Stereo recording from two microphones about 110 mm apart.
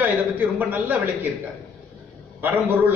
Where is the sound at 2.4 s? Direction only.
20° right (ahead or behind).